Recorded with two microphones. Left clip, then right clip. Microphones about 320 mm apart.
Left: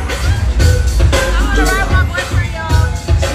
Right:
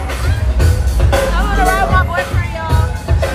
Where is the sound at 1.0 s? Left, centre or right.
Right.